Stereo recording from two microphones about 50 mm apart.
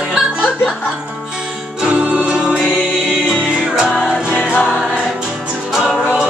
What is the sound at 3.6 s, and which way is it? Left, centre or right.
Music, centre.